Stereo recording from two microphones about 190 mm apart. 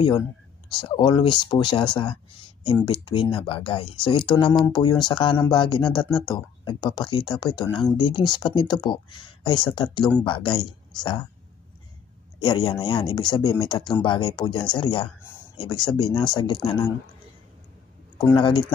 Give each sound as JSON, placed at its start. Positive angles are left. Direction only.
{"t": 0.7, "sound": "speech", "side_deg": 25}
{"t": 12.4, "sound": "speech", "side_deg": 25}
{"t": 18.1, "sound": "speech", "side_deg": 25}